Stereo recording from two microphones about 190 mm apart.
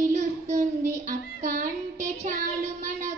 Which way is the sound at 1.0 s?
40° right (ahead or behind).